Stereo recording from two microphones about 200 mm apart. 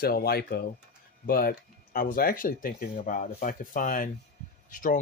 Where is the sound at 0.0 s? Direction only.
50° left (ahead or behind).